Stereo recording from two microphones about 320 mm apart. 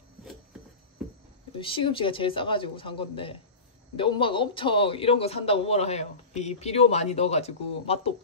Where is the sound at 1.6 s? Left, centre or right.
Centre.